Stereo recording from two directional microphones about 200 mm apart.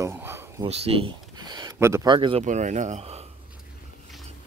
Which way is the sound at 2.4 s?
35° right (ahead or behind).